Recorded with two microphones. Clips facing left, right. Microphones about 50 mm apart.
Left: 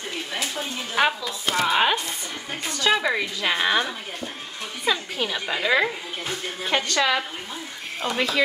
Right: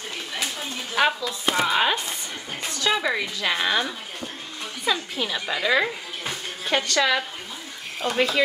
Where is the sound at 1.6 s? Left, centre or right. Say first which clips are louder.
Left 2 dB; centre.